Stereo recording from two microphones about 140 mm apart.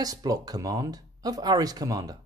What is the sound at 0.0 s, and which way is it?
Speech, 25° right (ahead or behind).